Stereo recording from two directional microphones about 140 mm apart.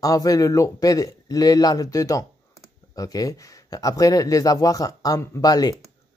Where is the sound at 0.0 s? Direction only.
25° left (ahead or behind).